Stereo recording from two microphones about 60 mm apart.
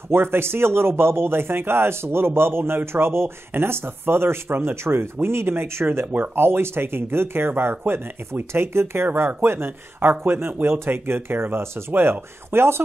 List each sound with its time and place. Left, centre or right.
0.1 s speech: right